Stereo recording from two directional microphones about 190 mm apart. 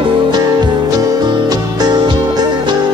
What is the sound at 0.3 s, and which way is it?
Music, 20° right (ahead or behind).